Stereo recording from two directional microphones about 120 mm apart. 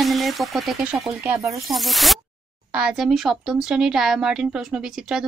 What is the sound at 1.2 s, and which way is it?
Speech, 20° right (ahead or behind).